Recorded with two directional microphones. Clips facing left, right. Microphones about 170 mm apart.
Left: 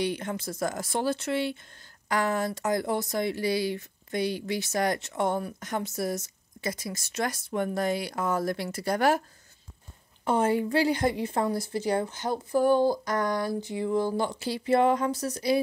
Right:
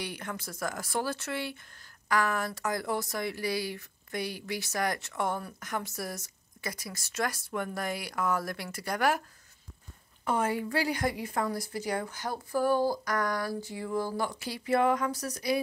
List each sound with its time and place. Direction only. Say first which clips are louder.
0.0 s speech: left 8 dB; 25° left (ahead or behind)
10.2 s speech: left 5 dB; 30° left (ahead or behind)